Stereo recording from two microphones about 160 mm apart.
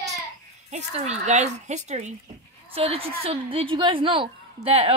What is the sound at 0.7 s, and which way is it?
A woman's voice, 45° right (ahead or behind).